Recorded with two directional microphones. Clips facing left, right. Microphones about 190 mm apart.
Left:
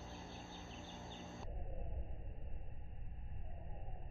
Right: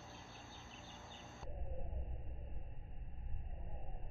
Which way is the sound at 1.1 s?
Centre (ahead or behind).